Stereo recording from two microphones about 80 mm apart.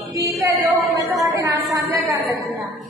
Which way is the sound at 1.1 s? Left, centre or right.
Right.